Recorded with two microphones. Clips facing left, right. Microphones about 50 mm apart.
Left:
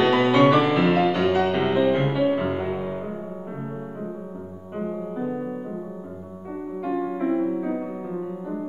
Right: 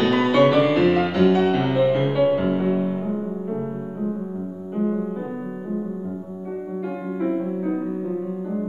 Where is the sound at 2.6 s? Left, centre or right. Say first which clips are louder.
Right 5 dB; centre.